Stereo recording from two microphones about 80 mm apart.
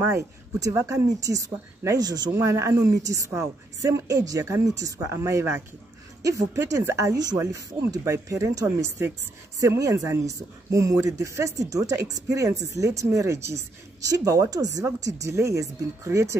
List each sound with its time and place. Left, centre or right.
0.1 s speech: right
2.3 s speech: right